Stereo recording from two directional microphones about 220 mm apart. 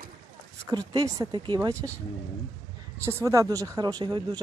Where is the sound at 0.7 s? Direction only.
20° right (ahead or behind).